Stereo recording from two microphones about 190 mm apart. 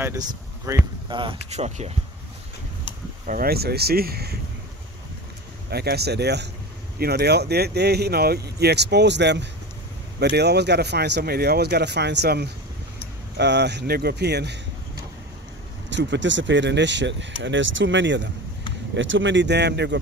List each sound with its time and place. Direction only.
0.7 s speech: 25° right (ahead or behind)
3.3 s speech: 50° right (ahead or behind)
5.7 s speech: 55° right (ahead or behind)
15.9 s speech: 70° right (ahead or behind)